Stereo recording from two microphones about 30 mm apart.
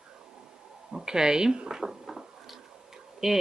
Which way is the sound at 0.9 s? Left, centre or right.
Right.